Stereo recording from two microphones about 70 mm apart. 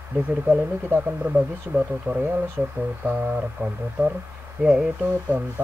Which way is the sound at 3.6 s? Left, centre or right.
Right.